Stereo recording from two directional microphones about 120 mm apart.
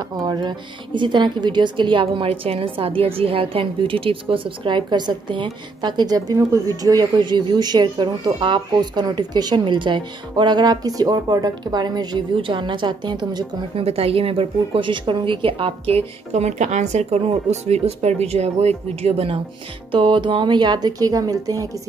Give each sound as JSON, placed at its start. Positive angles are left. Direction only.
{"t": 0.2, "sound": "a woman's voice", "side_deg": -35}
{"t": 13.7, "sound": "a woman's voice", "side_deg": -55}